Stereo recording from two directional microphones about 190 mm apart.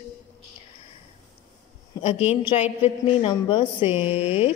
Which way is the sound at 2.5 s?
35° left (ahead or behind).